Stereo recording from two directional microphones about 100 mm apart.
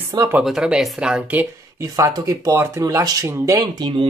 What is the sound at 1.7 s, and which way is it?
Speech, 35° right (ahead or behind).